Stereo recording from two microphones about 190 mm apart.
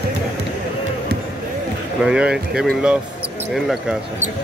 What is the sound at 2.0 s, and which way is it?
Speech, 5° right (ahead or behind).